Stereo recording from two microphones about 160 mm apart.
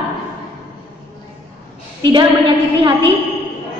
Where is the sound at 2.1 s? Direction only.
30° right (ahead or behind).